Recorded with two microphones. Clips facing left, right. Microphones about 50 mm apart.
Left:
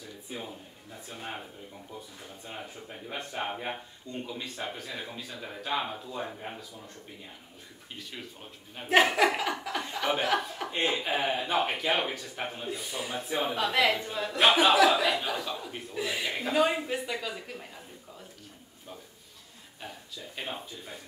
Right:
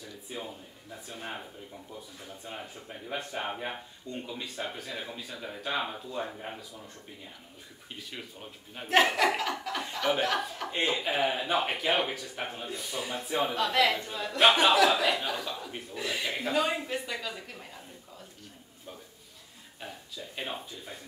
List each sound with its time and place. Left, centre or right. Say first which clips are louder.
3.1 s speech: even; centre
8.7 s speech: left 1 dB; centre